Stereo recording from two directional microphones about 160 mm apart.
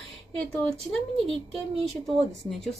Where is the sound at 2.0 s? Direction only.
Centre (ahead or behind).